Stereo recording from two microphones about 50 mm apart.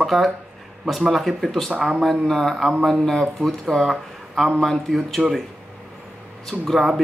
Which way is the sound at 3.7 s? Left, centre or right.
Centre.